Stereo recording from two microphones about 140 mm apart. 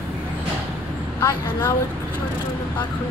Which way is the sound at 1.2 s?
20° left (ahead or behind).